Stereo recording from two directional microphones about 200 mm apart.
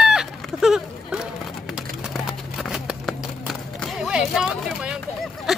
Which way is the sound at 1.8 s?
Centre (ahead or behind).